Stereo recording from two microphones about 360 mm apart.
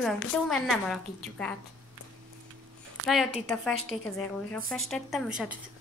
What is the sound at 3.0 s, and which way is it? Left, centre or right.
A woman's voice, centre.